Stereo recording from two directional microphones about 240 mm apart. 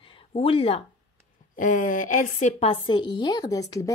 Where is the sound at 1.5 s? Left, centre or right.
Left; by 3.9 s centre.